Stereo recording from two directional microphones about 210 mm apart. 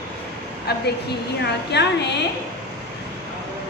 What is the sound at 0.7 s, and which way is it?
A woman's voice, 50° left (ahead or behind).